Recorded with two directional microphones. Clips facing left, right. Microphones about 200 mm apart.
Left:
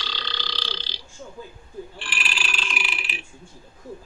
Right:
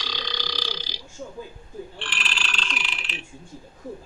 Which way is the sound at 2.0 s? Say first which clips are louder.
Even; 5° left (ahead or behind).